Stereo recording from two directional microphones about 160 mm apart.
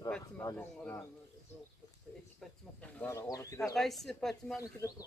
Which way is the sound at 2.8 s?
15° left (ahead or behind).